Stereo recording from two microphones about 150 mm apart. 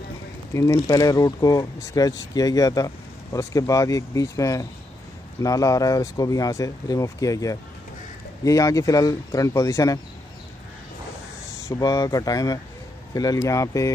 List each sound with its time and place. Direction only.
0.5 s speech: 20° left (ahead or behind)
11.7 s speech: 25° left (ahead or behind)